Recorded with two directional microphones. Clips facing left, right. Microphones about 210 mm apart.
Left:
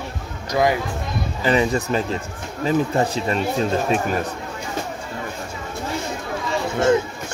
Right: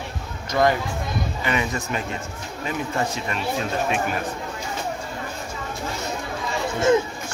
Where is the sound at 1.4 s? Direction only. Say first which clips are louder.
Left 8 dB; 35° left (ahead or behind).